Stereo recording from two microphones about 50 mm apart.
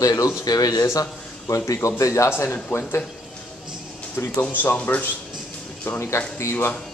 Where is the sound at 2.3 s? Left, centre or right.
Left.